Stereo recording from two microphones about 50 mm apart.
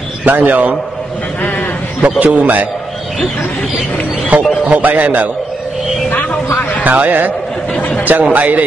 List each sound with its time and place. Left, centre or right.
0.2 s a man's voice: right
2.1 s a man's voice: right
4.3 s a man's voice: right
6.8 s a man's voice: right